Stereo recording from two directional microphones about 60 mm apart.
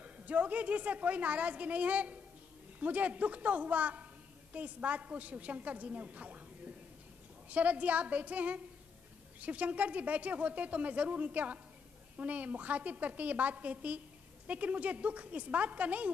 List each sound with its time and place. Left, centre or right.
0.0 s a woman's voice: right